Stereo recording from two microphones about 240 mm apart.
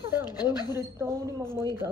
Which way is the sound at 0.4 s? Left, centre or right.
Centre.